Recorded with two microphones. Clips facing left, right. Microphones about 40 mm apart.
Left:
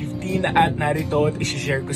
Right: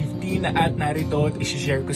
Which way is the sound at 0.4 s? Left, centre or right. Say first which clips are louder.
Left 4 dB; left.